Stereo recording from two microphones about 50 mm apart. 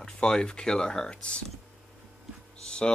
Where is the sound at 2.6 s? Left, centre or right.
Centre.